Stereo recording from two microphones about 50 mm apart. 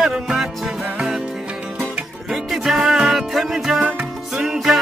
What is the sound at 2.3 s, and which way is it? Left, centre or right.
Music, centre.